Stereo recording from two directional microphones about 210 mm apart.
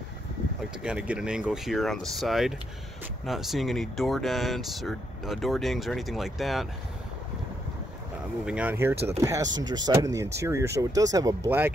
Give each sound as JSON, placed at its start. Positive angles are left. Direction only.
{"t": 0.8, "sound": "speech", "side_deg": -5}
{"t": 8.5, "sound": "speech", "side_deg": -5}